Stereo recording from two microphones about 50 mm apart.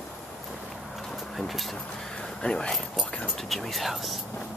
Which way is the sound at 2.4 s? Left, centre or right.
Centre.